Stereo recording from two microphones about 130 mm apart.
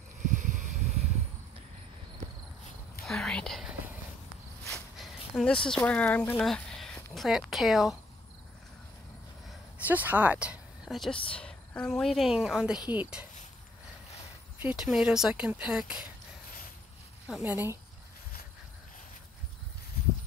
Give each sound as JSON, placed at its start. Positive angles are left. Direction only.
{"t": 0.3, "sound": "a sound", "side_deg": -70}
{"t": 3.1, "sound": "speech", "side_deg": 5}
{"t": 6.4, "sound": "a sound", "side_deg": 5}
{"t": 7.2, "sound": "speech", "side_deg": -5}
{"t": 9.8, "sound": "speech", "side_deg": -15}
{"t": 11.3, "sound": "speech", "side_deg": 5}
{"t": 14.6, "sound": "speech", "side_deg": -10}
{"t": 17.3, "sound": "speech", "side_deg": -5}